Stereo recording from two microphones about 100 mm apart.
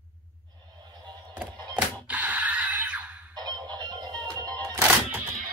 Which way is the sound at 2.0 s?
15° right (ahead or behind).